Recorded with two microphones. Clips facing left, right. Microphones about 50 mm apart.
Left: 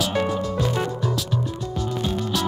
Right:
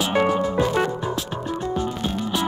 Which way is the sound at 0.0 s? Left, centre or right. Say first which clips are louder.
Right 3 dB; right.